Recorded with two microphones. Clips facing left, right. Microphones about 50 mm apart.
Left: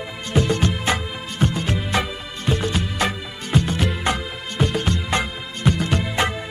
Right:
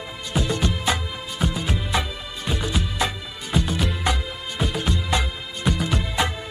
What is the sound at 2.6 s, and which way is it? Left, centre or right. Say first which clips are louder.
Music: right 1 dB; left.